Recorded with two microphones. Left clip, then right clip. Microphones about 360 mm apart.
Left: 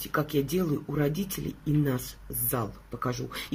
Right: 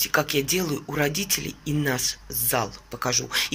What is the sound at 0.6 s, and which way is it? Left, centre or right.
Speech, right.